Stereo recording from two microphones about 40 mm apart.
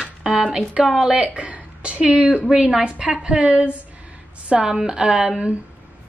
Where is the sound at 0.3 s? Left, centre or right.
Right.